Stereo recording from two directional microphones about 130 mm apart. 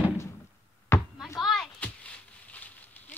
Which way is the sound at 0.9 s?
20° left (ahead or behind).